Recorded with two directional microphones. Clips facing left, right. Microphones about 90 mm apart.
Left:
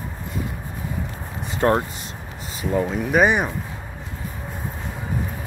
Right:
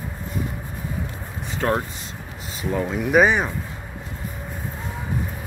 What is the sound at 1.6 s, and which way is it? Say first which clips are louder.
Speech: left 4 dB; 25° left (ahead or behind).